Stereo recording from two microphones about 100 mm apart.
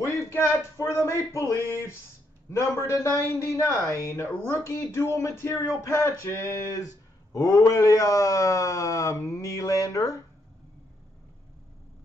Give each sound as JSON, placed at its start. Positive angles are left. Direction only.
{"t": 0.0, "sound": "speech", "side_deg": 30}